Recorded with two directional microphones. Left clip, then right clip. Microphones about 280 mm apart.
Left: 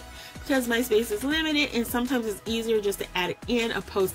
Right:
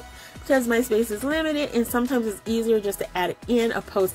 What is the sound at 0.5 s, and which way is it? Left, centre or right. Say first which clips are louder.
A woman's voice: right 3 dB; centre.